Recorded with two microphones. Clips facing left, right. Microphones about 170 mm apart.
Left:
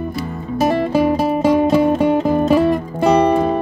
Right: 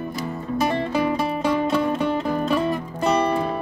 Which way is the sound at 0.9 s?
50° left (ahead or behind).